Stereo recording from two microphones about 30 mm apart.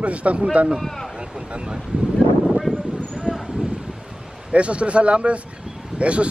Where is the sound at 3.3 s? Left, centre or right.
Right.